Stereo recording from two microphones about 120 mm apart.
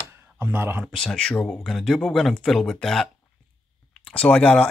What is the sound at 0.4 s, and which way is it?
Speech, 15° right (ahead or behind).